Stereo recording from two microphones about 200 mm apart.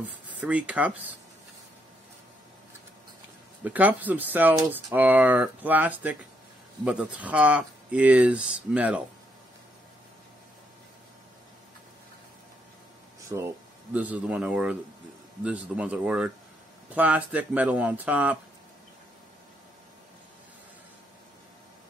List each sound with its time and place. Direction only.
0.4 s speech: 5° right (ahead or behind)
3.6 s speech: 10° right (ahead or behind)
13.3 s speech: 20° right (ahead or behind)
13.9 s a man's voice: 5° right (ahead or behind)